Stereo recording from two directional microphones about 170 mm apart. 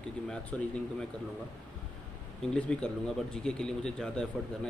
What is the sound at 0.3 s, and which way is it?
Speech, 5° left (ahead or behind).